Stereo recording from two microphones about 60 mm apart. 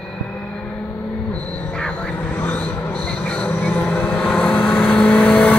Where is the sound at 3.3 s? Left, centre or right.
Left.